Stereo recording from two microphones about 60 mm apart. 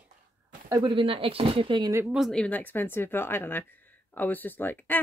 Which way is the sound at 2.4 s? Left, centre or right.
Left.